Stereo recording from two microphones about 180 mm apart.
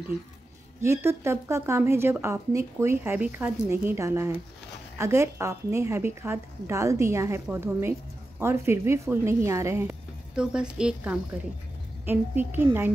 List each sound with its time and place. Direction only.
0.8 s a woman's voice: 15° right (ahead or behind)